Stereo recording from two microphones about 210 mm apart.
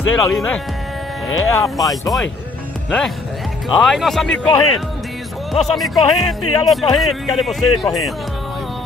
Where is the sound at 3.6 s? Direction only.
Centre (ahead or behind).